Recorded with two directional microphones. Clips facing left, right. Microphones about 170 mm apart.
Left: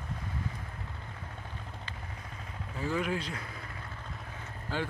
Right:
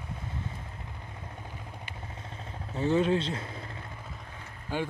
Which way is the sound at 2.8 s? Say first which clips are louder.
Right 7 dB; 25° right (ahead or behind).